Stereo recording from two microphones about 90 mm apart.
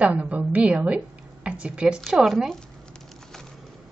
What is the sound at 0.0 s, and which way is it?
Speech, 15° right (ahead or behind).